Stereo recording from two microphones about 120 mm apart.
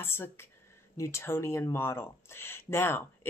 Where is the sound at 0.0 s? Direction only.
20° left (ahead or behind).